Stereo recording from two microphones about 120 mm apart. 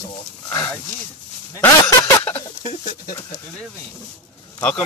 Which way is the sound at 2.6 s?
75° left (ahead or behind).